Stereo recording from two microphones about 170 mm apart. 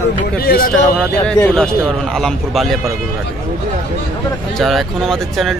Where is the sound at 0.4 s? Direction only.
60° left (ahead or behind).